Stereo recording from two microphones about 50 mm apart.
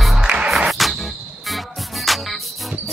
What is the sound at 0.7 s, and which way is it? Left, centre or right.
Cricket, centre.